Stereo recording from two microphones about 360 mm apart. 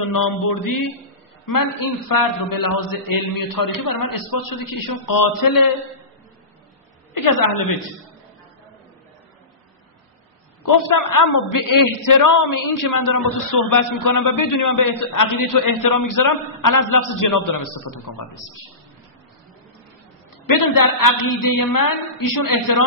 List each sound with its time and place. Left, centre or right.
0.0 s a man's voice: left
7.2 s a man's voice: left
10.6 s a man's voice: left
20.4 s a man's voice: left